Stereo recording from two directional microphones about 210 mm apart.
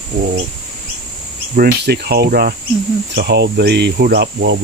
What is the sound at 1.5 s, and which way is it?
Speech, 50° right (ahead or behind).